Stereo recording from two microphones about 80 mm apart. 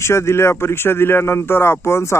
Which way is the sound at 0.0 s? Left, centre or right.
Left.